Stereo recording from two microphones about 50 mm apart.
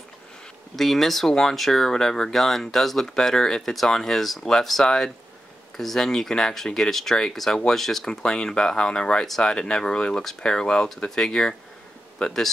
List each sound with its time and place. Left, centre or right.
0.7 s speech: centre